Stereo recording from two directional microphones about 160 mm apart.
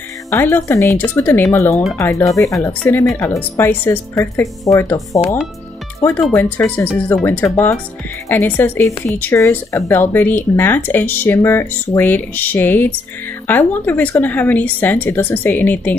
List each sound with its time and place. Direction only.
0.3 s speech: 15° left (ahead or behind)